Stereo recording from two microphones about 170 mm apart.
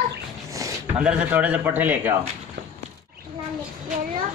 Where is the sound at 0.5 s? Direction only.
20° right (ahead or behind).